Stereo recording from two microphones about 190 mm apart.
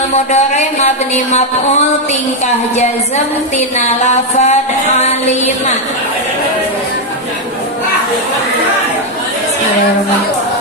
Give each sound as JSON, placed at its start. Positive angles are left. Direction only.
{"t": 0.1, "sound": "speech", "side_deg": 35}
{"t": 3.7, "sound": "speech", "side_deg": 35}